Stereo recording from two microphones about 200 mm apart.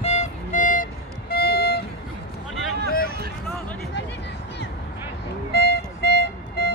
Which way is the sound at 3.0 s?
55° right (ahead or behind).